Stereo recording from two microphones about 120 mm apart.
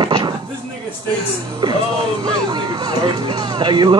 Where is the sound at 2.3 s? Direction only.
35° right (ahead or behind).